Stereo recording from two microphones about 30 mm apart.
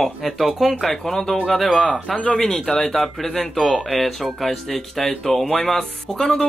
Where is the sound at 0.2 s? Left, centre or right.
Centre.